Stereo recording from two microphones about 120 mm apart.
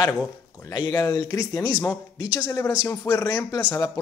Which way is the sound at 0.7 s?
30° left (ahead or behind).